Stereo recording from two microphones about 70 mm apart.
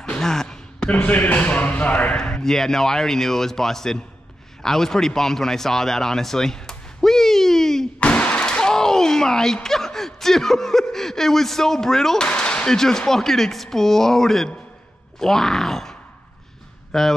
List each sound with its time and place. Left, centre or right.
0.0 s a sound: centre
0.9 s speech: left
2.1 s a man's voice: centre
8.0 s speech: centre